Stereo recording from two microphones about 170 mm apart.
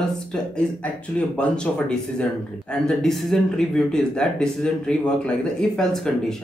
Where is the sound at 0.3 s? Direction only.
5° left (ahead or behind).